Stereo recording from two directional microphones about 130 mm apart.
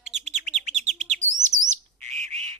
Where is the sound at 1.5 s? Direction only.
35° right (ahead or behind).